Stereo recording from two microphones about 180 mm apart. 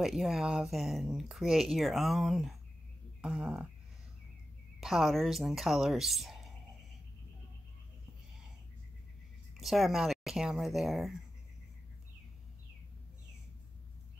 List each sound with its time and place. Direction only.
0.0 s speech: centre (ahead or behind)
4.7 s speech: centre (ahead or behind)
9.6 s speech: centre (ahead or behind)